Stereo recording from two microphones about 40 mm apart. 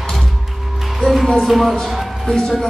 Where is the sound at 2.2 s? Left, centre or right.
Centre.